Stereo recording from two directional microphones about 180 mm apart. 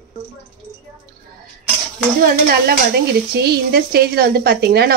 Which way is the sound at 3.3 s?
60° right (ahead or behind).